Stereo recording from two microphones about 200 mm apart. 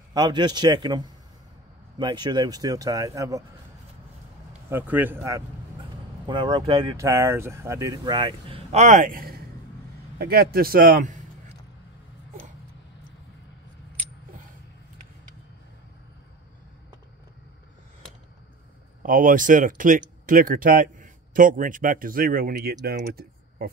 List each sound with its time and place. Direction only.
0.1 s speech: 20° right (ahead or behind)
4.6 s speech: 10° right (ahead or behind)
6.2 s a man's voice: 25° right (ahead or behind); by 11.1 s 40° right (ahead or behind)
19.0 s speech: 45° right (ahead or behind)